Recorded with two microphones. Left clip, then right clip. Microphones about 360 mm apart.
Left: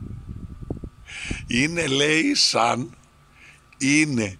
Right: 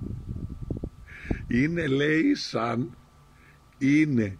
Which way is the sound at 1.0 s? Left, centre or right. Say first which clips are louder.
Left 5 dB; centre.